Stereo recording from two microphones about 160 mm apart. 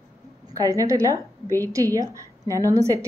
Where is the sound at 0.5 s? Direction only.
20° right (ahead or behind).